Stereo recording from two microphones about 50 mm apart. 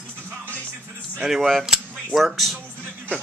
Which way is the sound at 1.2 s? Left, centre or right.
Centre.